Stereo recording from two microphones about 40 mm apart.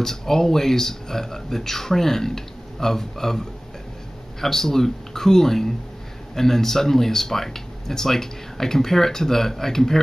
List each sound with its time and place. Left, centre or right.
0.0 s speech: centre